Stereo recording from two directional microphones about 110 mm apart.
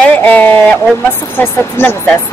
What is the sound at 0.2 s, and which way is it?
Speech, 15° left (ahead or behind).